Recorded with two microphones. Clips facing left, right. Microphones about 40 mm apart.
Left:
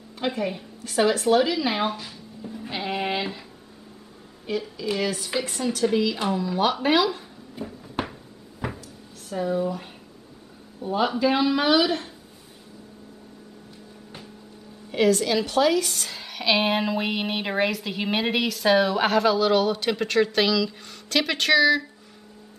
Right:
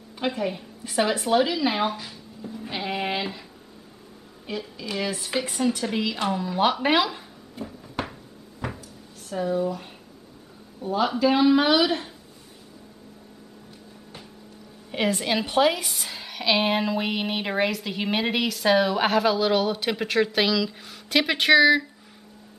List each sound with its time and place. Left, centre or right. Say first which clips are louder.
0.2 s speech: even; centre
5.0 s a woman's voice: left 1 dB; centre
7.5 s cupboard open or close: left 1 dB; centre
9.3 s a woman's voice: even; centre
11.1 s a woman's voice: right 4 dB; centre
14.9 s a woman's voice: left 4 dB; right
15.9 s a woman's voice: left 1 dB; centre